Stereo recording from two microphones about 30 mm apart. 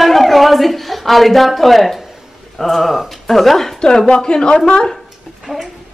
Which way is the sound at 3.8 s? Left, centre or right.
Left.